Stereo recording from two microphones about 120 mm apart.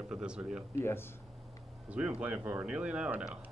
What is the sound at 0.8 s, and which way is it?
Speech, 20° left (ahead or behind).